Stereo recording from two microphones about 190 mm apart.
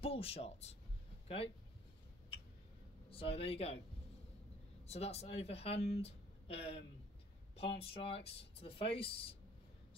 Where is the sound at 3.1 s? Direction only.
30° left (ahead or behind).